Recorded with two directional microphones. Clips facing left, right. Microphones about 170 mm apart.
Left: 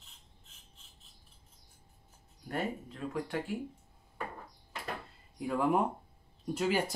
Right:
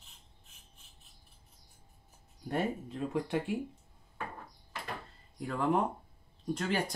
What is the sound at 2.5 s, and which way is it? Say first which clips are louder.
Speech: right 3 dB; 20° right (ahead or behind).